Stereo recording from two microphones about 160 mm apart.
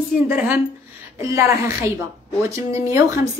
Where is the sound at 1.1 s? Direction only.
20° right (ahead or behind).